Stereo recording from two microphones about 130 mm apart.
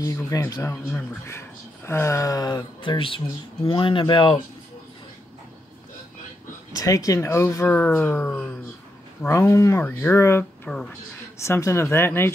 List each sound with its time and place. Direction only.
0.0 s speech: 25° left (ahead or behind)
1.9 s speech: 20° left (ahead or behind); by 4.4 s 40° left (ahead or behind)
6.7 s speech: 25° left (ahead or behind); by 8.5 s 10° left (ahead or behind)
9.3 s speech: 25° left (ahead or behind)